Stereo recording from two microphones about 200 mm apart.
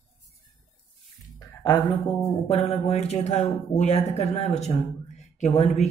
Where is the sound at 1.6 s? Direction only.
20° left (ahead or behind).